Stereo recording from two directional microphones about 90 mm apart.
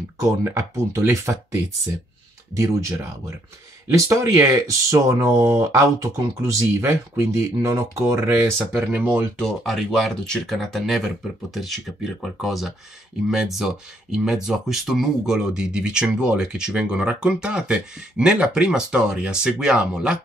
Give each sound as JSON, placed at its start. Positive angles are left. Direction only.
{"t": 0.2, "sound": "speech", "side_deg": -35}
{"t": 9.4, "sound": "speech", "side_deg": 0}